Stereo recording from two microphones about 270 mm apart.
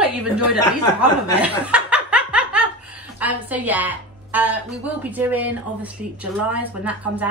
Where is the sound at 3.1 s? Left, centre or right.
Centre.